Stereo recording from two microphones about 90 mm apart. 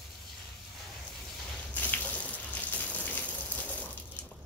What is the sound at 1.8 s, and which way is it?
Water, 15° left (ahead or behind).